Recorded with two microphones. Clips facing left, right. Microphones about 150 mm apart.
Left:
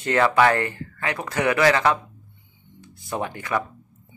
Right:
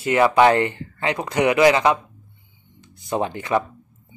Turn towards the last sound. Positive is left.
turn(degrees=-25)  # may be behind; listen again after turning